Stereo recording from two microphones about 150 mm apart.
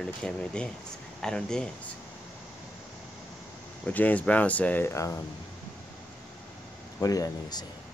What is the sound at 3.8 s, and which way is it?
Speech, 10° left (ahead or behind).